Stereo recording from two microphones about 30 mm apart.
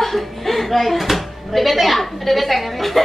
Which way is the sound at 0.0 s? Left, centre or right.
Centre.